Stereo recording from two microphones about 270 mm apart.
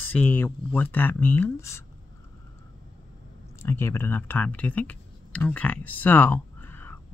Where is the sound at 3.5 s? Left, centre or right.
Centre.